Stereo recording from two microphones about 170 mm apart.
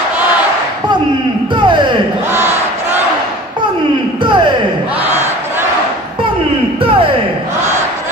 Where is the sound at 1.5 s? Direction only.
25° right (ahead or behind).